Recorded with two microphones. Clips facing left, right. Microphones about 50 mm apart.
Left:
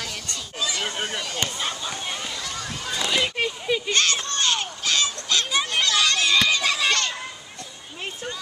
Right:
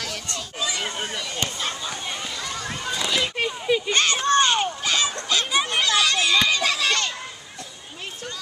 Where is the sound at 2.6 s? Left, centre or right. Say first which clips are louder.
Right 2 dB; centre.